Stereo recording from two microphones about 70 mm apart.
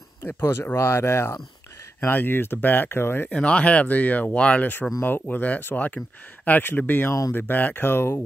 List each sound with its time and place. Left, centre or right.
0.5 s speech: left
3.3 s speech: centre
7.1 s speech: left
7.3 s speech: left